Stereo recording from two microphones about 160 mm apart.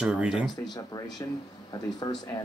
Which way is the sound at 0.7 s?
25° left (ahead or behind).